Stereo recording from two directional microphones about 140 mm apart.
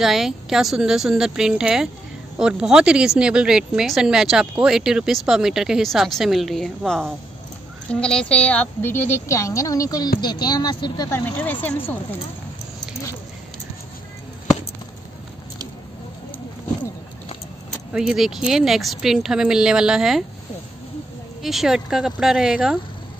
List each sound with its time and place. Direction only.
0.0 s a woman's voice: centre (ahead or behind); by 11.1 s 30° left (ahead or behind)
11.1 s a woman's voice: 15° left (ahead or behind)
17.9 s a woman's voice: 5° right (ahead or behind)
21.4 s a woman's voice: centre (ahead or behind)